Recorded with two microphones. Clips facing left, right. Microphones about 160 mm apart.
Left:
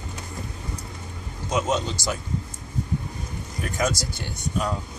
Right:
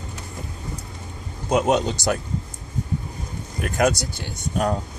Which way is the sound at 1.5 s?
60° right (ahead or behind).